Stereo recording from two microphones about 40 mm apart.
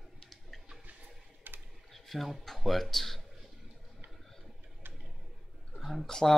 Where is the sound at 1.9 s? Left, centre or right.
Centre.